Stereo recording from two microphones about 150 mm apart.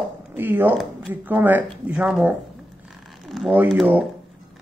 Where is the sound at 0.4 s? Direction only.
15° right (ahead or behind).